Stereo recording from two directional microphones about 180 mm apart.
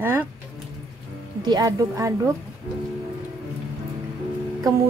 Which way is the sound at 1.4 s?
20° right (ahead or behind).